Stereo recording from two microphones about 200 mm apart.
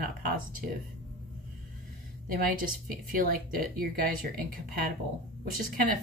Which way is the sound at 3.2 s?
45° right (ahead or behind).